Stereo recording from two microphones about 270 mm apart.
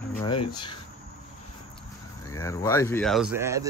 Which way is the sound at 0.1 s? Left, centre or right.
Centre.